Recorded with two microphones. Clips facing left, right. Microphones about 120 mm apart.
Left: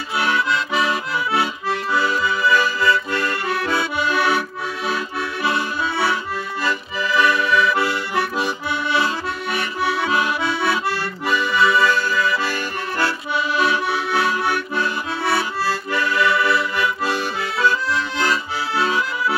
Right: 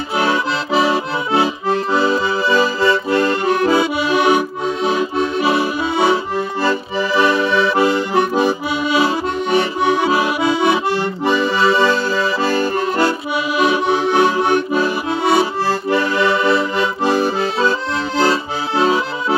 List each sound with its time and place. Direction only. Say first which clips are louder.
0.2 s accordion: right 2 dB; 25° right (ahead or behind)
6.6 s accordion: right 5 dB; 35° right (ahead or behind)
13.6 s accordion: right 7 dB; 20° right (ahead or behind)